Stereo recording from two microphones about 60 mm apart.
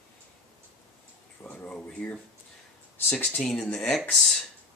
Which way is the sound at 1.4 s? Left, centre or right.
Left.